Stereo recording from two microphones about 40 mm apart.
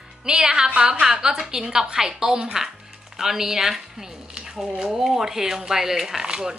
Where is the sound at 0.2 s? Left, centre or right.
Right.